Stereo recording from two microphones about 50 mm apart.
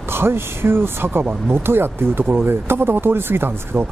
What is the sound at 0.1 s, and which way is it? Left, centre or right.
Speech, right.